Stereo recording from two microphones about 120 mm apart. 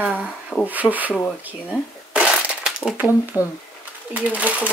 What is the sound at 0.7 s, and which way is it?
Speech, 15° right (ahead or behind).